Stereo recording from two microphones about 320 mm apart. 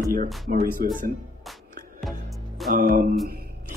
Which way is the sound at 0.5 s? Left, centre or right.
Right.